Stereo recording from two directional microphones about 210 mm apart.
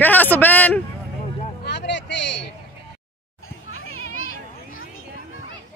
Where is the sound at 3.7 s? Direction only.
75° left (ahead or behind).